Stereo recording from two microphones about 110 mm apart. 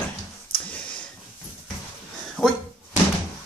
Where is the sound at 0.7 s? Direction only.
10° left (ahead or behind).